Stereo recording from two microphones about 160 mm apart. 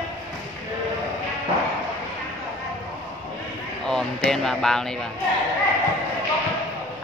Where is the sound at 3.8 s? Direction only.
5° left (ahead or behind).